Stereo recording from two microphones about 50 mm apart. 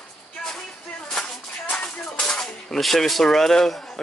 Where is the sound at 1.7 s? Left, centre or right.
Left.